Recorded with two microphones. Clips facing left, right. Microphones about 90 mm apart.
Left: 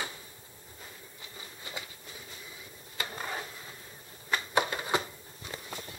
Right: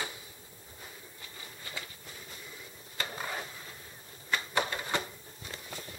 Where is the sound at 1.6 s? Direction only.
20° left (ahead or behind).